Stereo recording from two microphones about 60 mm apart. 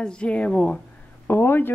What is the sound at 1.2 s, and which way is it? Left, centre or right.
Speech, left.